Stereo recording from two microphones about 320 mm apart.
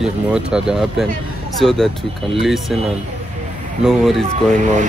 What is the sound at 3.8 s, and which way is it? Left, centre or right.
Speech, centre.